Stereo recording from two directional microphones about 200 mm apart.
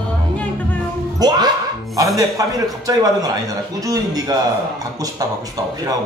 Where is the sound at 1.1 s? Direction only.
20° right (ahead or behind).